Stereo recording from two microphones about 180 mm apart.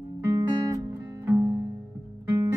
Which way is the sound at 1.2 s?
15° right (ahead or behind).